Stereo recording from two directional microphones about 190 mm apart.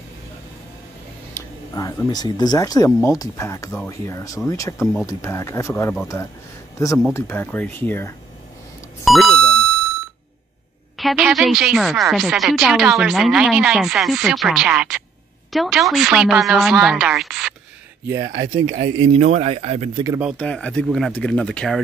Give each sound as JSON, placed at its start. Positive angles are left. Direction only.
{"t": 1.3, "sound": "speech", "side_deg": 15}
{"t": 7.2, "sound": "speech", "side_deg": 10}
{"t": 9.0, "sound": "speech", "side_deg": 0}
{"t": 11.0, "sound": "a woman's voice", "side_deg": 0}
{"t": 18.2, "sound": "speech", "side_deg": -70}
{"t": 18.7, "sound": "speech", "side_deg": -35}
{"t": 20.0, "sound": "speech", "side_deg": -15}
{"t": 20.2, "sound": "a woman's voice", "side_deg": 0}